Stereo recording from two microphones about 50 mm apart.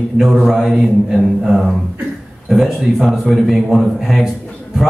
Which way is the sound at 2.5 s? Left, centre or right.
Centre.